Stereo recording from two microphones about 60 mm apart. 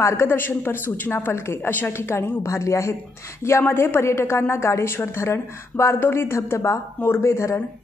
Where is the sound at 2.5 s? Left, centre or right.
Left.